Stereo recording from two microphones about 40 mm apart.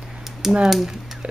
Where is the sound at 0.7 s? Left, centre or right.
Centre.